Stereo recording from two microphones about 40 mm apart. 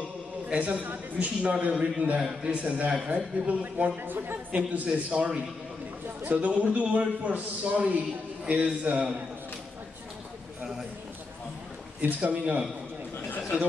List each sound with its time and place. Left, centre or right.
0.5 s a man's voice: right
2.5 s a man's voice: right
4.5 s a man's voice: right
12.0 s a man's voice: right